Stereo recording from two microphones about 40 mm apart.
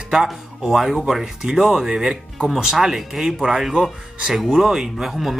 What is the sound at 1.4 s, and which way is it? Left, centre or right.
Speech, centre.